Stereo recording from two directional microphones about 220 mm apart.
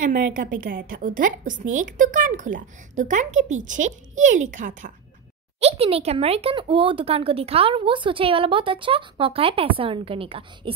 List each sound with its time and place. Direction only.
0.0 s a woman's voice: 40° right (ahead or behind)